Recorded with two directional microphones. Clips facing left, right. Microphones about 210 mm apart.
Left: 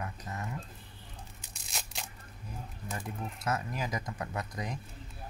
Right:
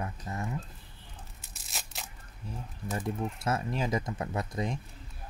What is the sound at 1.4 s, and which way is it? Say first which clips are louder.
Tearing: even; centre (ahead or behind).